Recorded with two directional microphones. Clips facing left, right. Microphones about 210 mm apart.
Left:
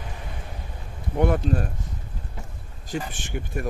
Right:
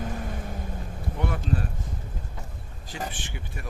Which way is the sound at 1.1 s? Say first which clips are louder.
Left 7 dB; 45° left (ahead or behind).